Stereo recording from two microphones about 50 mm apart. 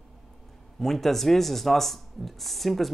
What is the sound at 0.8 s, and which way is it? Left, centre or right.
Speech, centre.